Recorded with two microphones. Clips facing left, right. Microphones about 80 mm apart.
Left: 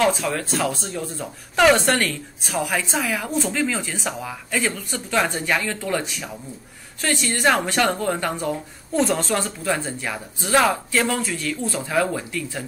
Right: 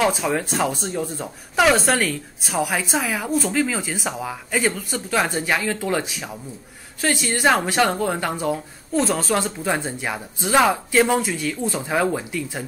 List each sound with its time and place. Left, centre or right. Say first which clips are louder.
0.0 s a woman's voice: even; centre
1.7 s a woman's voice: left 1 dB; centre
9.4 s a woman's voice: right 1 dB; right